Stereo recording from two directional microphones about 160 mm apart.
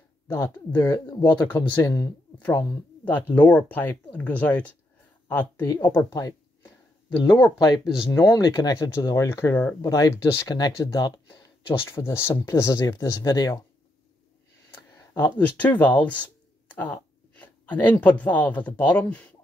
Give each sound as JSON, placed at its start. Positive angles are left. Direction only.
{"t": 0.3, "sound": "speech", "side_deg": 15}
{"t": 2.3, "sound": "speech", "side_deg": 10}
{"t": 6.1, "sound": "a sound", "side_deg": 20}
{"t": 7.4, "sound": "speech", "side_deg": 25}
{"t": 15.0, "sound": "a sound", "side_deg": 15}
{"t": 17.7, "sound": "speech", "side_deg": 10}